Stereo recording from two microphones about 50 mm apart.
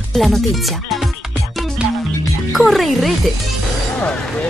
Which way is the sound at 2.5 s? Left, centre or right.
Centre.